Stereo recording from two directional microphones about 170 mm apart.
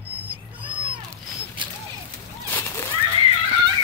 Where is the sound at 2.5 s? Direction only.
15° left (ahead or behind).